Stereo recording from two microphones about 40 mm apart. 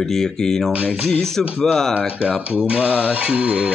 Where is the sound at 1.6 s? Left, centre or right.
Centre.